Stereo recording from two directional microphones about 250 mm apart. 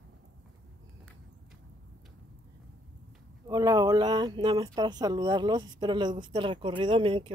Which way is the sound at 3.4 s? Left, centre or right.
Centre.